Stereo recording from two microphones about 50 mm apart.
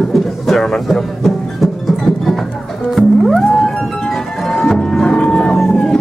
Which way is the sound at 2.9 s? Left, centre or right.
Centre.